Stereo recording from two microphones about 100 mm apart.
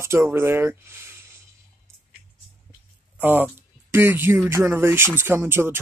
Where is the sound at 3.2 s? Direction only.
20° right (ahead or behind).